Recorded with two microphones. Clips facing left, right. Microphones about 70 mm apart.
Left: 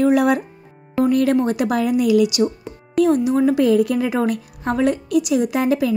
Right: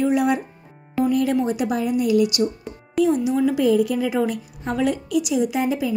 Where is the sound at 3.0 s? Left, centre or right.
Left.